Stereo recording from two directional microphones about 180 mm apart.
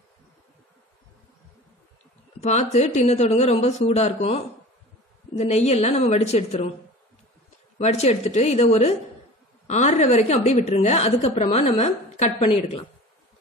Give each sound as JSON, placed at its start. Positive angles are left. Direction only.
{"t": 2.4, "sound": "a woman's voice", "side_deg": 40}
{"t": 7.8, "sound": "a woman's voice", "side_deg": 35}